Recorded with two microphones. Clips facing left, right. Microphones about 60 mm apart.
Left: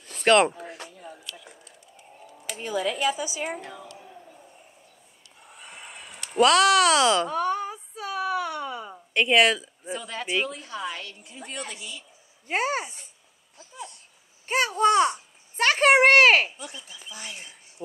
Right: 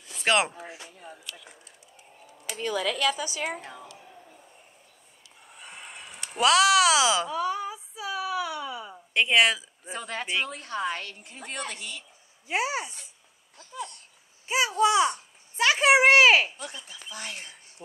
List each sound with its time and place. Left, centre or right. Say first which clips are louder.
0.2 s a sound: left 6 dB; centre
2.5 s speech: left 1 dB; right
3.6 s a woman's voice: left 2 dB; centre
5.5 s a sound: even; centre
6.3 s speech: left 2 dB; centre
7.2 s a sound: left 2 dB; left
9.1 s speech: left 2 dB; centre
9.9 s speech: right 1 dB; right
10.2 s speech: left 3 dB; centre
10.5 s a woman's voice: right 3 dB; right
12.4 s speech: left 2 dB; left
14.4 s a child's voice: left 1 dB; left
16.5 s a woman's voice: right 1 dB; right